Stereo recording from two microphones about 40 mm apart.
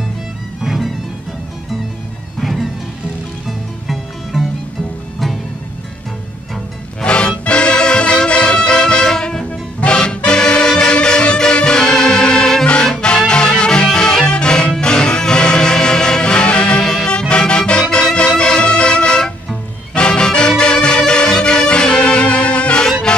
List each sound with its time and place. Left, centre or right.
0.6 s music: centre
2.4 s music: centre
7.0 s music: left
9.8 s music: left